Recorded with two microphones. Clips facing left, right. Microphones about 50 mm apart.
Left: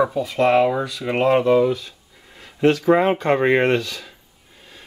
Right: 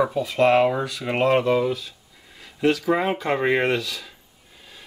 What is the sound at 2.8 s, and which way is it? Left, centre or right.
Speech, centre.